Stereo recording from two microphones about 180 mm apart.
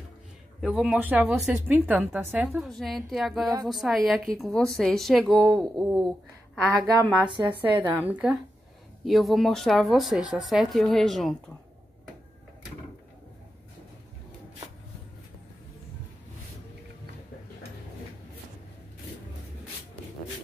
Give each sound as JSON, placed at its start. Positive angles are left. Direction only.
{"t": 0.6, "sound": "speech", "side_deg": -5}
{"t": 7.2, "sound": "a woman's voice", "side_deg": -25}
{"t": 7.8, "sound": "a woman's voice", "side_deg": -10}